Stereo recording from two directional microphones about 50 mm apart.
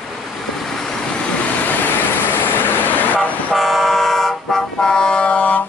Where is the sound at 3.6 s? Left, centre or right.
Centre; by 5.6 s left.